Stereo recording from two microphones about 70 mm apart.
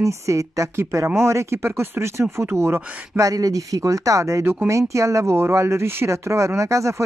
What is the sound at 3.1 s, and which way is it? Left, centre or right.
Speech, right.